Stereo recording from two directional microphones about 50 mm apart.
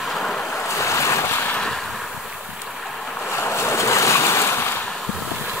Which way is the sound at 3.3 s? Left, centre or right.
Left.